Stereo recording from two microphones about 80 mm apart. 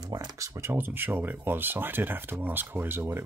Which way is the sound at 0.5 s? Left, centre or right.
Right.